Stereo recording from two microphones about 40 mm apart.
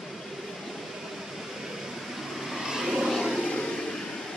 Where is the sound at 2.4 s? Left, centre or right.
Centre.